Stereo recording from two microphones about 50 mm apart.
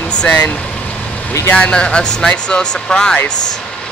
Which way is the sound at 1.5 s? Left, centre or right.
Left.